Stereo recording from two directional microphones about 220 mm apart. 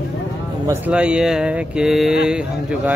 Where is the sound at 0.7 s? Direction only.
5° right (ahead or behind).